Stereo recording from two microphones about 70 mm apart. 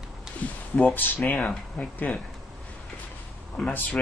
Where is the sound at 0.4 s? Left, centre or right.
Left.